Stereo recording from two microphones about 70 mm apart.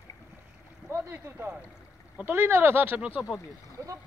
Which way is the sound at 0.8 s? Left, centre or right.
Right.